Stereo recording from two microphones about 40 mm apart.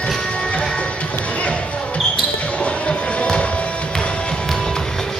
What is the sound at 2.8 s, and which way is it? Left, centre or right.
Music, left.